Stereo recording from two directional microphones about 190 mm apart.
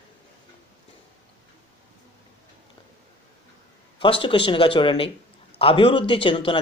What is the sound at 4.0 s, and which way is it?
Speech, 25° left (ahead or behind).